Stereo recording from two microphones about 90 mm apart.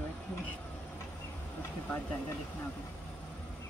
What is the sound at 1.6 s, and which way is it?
Speech, 30° left (ahead or behind).